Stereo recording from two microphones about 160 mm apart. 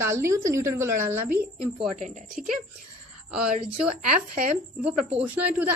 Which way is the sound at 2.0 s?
50° right (ahead or behind).